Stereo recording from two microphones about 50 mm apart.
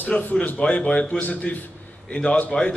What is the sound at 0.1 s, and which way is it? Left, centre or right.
Speech, left.